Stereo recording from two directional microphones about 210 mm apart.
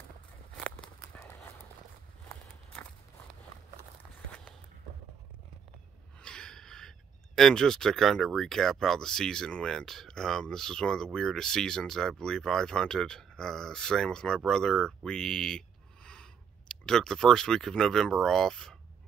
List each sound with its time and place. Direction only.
1.1 s horse: 10° left (ahead or behind)
2.2 s walk: 10° left (ahead or behind)
6.1 s speech: 5° left (ahead or behind)